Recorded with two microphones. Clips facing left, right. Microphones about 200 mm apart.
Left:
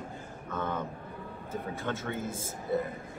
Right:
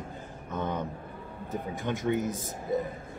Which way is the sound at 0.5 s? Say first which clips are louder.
Right 2 dB; 15° right (ahead or behind).